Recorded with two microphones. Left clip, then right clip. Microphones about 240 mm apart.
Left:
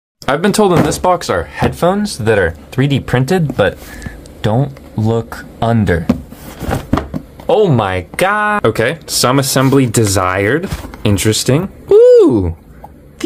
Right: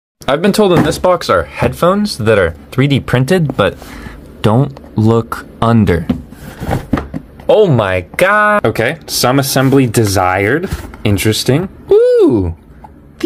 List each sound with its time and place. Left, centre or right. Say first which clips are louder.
0.2 s speech: right 1 dB; centre
7.4 s speech: right 2 dB; centre